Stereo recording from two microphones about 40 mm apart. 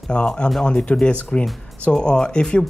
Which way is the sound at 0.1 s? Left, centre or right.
Left.